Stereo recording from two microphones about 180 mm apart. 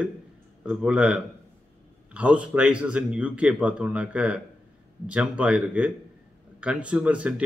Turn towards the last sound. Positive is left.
turn(degrees=-5)  # may be behind; listen again after turning